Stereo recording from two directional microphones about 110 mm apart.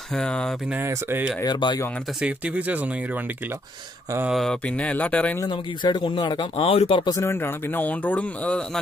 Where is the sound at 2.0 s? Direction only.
10° right (ahead or behind).